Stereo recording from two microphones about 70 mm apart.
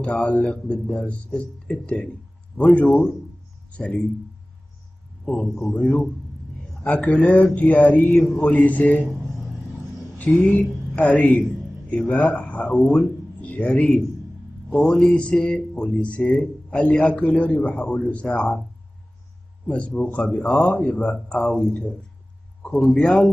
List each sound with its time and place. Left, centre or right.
0.0 s speech: centre
2.5 s mantra: centre
3.7 s speech: centre
5.2 s speech: centre
5.6 s mantra: left
10.1 s speech: left
19.7 s speech: centre
22.6 s a sound: centre